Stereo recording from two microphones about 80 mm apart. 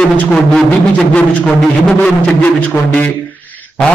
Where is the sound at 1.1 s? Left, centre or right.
Centre.